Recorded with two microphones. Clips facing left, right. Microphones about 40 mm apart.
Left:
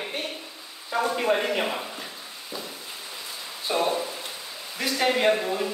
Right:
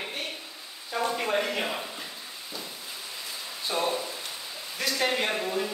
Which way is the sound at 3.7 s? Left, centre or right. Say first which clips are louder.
Left 4 dB; left.